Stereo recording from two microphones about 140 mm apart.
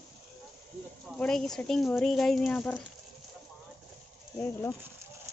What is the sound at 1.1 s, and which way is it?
Speech, 5° left (ahead or behind).